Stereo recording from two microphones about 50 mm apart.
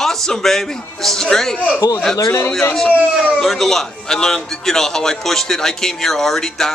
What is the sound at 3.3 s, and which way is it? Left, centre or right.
A man's voice, centre.